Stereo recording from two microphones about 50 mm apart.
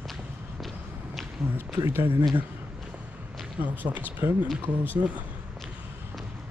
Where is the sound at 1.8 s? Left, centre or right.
Right.